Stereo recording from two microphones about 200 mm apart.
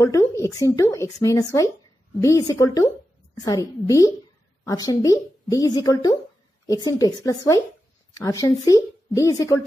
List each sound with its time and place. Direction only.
0.0 s speech: 15° left (ahead or behind)